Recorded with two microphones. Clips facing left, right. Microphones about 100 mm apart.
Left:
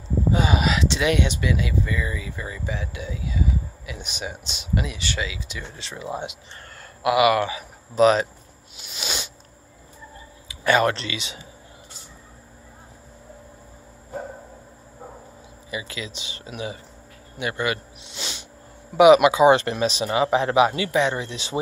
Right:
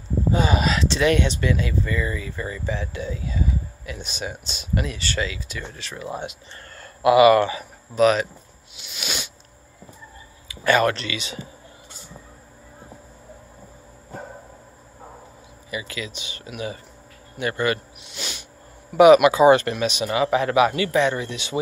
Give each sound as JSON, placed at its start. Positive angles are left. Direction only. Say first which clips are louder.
{"t": 0.3, "sound": "speech", "louder": "right 1 dB", "side_deg": 15}
{"t": 7.0, "sound": "speech", "louder": "right 5 dB", "side_deg": 10}
{"t": 7.9, "sound": "speech", "louder": "left 1 dB", "side_deg": 30}
{"t": 8.7, "sound": "a sound", "louder": "even", "side_deg": 35}
{"t": 10.5, "sound": "speech", "louder": "right 1 dB", "side_deg": 20}
{"t": 15.7, "sound": "speech", "louder": "right 1 dB", "side_deg": 25}
{"t": 18.0, "sound": "a sound", "louder": "even", "side_deg": 25}
{"t": 18.9, "sound": "speech", "louder": "right 1 dB", "side_deg": 20}